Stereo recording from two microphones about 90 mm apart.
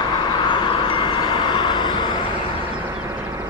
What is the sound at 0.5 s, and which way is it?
Vehicle, 60° left (ahead or behind).